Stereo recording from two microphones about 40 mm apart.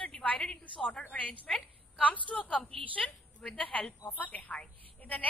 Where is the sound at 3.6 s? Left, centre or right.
Left.